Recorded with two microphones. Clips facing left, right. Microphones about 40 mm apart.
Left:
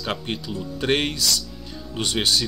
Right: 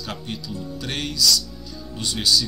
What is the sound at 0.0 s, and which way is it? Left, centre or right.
Speech, left.